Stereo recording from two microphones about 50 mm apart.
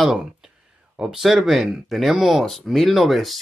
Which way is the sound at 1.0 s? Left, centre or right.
Centre.